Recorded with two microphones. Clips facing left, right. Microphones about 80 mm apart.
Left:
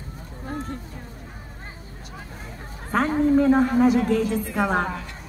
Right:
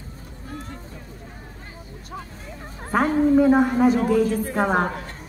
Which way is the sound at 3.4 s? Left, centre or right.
Centre.